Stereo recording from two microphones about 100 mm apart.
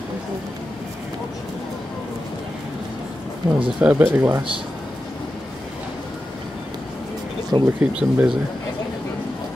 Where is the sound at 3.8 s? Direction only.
15° right (ahead or behind).